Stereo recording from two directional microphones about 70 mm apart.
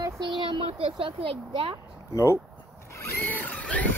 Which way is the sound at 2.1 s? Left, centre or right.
Left.